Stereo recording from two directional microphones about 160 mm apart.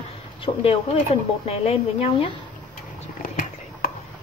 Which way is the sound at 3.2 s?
60° left (ahead or behind).